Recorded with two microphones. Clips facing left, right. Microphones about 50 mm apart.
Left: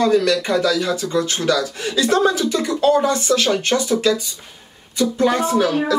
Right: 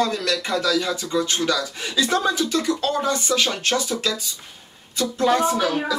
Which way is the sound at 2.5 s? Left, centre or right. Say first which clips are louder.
Left 6 dB; centre.